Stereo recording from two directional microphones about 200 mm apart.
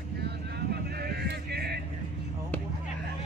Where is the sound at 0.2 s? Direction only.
50° right (ahead or behind).